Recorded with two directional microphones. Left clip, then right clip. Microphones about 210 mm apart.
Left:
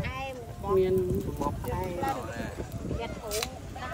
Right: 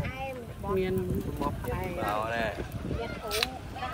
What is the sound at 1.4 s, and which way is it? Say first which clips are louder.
Speech: right 2 dB; 45° left (ahead or behind).